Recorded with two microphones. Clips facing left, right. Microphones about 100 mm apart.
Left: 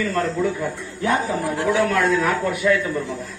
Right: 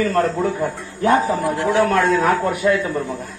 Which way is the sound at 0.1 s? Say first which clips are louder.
Right 3 dB; 40° right (ahead or behind).